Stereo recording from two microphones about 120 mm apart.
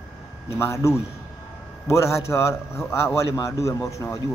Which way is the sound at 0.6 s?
25° left (ahead or behind).